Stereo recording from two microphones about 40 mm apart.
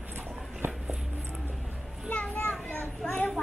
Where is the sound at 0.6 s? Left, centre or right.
Right.